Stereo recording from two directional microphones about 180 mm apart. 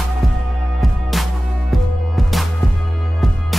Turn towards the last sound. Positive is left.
turn(degrees=0)  # may be behind; listen again after turning